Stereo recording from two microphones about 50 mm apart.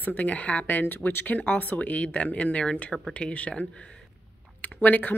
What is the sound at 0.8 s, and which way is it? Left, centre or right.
A woman's voice, left.